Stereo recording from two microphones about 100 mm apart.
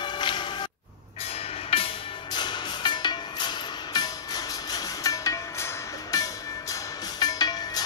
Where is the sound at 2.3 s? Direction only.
50° left (ahead or behind).